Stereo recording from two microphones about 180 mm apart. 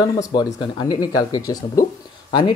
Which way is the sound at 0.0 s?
25° left (ahead or behind).